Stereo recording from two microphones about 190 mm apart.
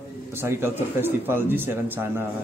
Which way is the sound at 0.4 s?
15° right (ahead or behind).